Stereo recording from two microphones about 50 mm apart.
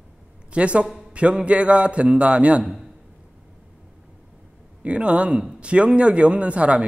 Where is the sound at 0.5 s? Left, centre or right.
Right.